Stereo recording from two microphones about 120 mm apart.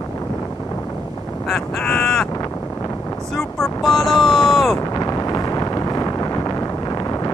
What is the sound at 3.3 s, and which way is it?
Speech, centre (ahead or behind).